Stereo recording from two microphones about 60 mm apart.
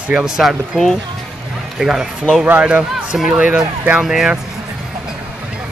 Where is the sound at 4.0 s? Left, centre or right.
Centre.